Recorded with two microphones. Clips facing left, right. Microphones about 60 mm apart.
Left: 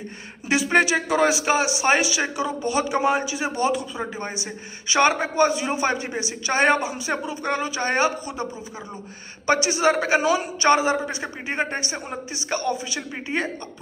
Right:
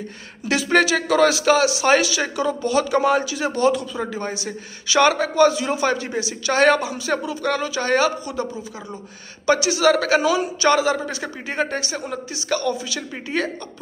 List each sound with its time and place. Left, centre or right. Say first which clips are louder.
0.5 s speech: right 1 dB; centre
9.5 s speech: right 3 dB; left